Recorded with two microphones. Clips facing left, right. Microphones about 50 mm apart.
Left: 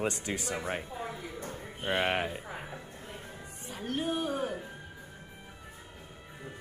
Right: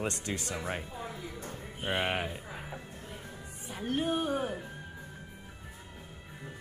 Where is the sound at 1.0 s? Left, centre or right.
Left.